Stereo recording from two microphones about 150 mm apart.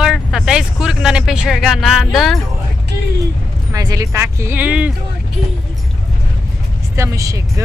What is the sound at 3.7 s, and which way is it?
Speech, 25° right (ahead or behind).